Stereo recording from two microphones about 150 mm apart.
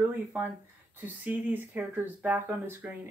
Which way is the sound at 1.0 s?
10° right (ahead or behind).